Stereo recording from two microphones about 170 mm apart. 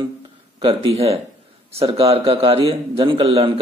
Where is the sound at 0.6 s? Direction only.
35° right (ahead or behind).